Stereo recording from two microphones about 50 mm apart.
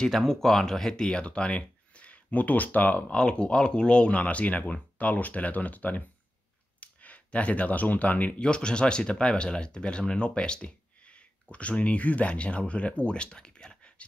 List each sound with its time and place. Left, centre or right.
0.0 s speech: centre; by 3.2 s left
3.2 s speech: centre
8.4 s speech: centre